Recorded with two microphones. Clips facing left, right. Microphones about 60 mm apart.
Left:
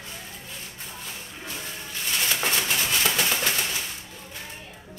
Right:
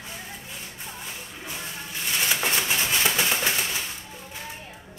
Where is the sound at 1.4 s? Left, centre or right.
Centre.